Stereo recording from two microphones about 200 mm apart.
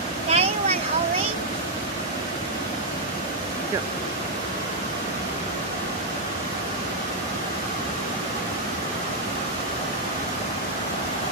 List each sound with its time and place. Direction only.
0.3 s vehicle: 30° right (ahead or behind)